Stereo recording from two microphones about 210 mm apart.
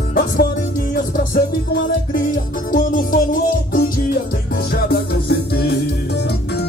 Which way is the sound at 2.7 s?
40° left (ahead or behind).